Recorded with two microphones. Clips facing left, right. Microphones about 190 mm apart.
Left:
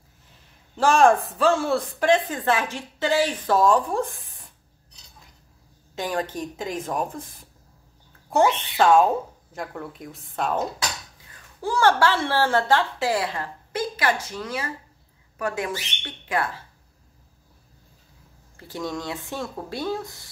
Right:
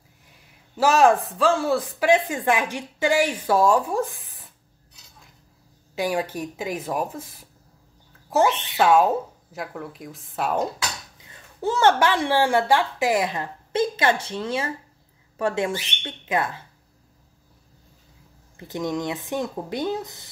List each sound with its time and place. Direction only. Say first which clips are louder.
0.7 s speech: even; 5° right (ahead or behind)
5.9 s speech: right 2 dB; 10° right (ahead or behind)
11.1 s a woman's voice: right 5 dB; 20° right (ahead or behind)
18.6 s a woman's voice: right 4 dB; 20° right (ahead or behind)